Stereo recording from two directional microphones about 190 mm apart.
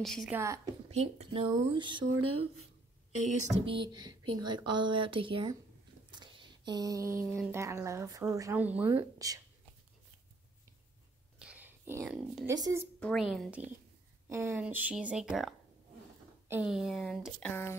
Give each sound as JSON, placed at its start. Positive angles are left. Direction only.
{"t": 0.0, "sound": "speech", "side_deg": 0}
{"t": 0.3, "sound": "speech", "side_deg": -15}
{"t": 0.8, "sound": "speech", "side_deg": -35}
{"t": 3.4, "sound": "speech", "side_deg": -25}
{"t": 6.1, "sound": "a sound", "side_deg": -25}
{"t": 7.3, "sound": "speech", "side_deg": -10}
{"t": 11.3, "sound": "whispering", "side_deg": -5}
{"t": 12.4, "sound": "speech", "side_deg": -15}
{"t": 13.0, "sound": "speech", "side_deg": 0}